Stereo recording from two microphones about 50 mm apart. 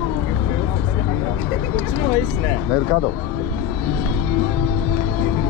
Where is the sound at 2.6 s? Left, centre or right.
Left.